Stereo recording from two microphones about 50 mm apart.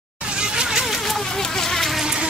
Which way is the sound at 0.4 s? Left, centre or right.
Centre.